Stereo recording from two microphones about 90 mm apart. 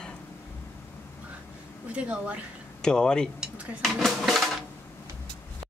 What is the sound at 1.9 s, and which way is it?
Speech, 15° right (ahead or behind).